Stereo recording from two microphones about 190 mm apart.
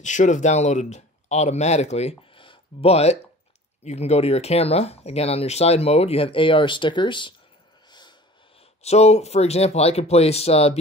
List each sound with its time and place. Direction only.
0.0 s speech: 40° left (ahead or behind)